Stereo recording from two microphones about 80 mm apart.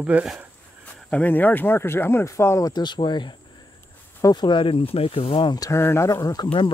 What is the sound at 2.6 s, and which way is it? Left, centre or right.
Speech, left.